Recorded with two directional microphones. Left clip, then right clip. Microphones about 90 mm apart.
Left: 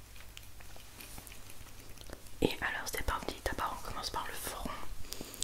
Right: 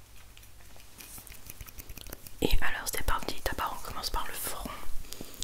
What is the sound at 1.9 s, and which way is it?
Whispering, 5° right (ahead or behind).